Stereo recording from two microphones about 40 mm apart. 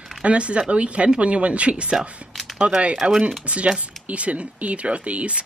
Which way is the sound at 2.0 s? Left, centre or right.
Centre.